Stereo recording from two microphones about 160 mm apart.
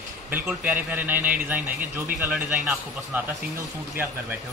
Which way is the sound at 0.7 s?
10° right (ahead or behind).